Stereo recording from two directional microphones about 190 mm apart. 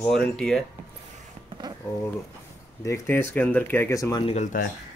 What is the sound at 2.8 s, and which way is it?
Speech, 15° left (ahead or behind).